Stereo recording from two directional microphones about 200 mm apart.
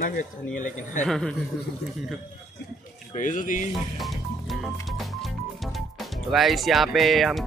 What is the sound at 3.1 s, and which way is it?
Speech, 40° left (ahead or behind).